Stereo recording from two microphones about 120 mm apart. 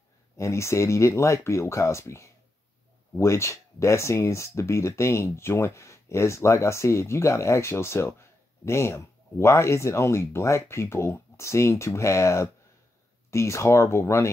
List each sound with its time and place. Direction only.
0.4 s speech: 25° left (ahead or behind)